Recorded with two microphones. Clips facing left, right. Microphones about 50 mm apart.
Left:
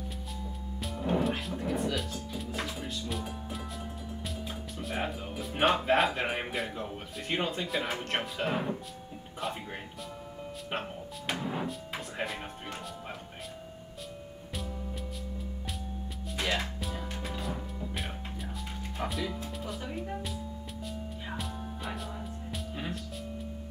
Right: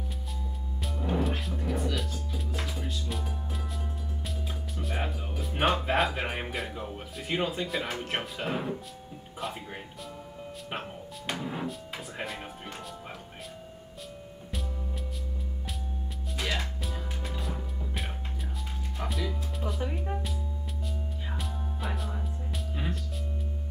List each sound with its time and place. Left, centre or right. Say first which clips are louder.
0.8 s music: left 1 dB; centre
4.7 s speech: even; centre
16.3 s music: left 1 dB; centre
18.9 s speech: even; centre
21.3 s music: left 1 dB; centre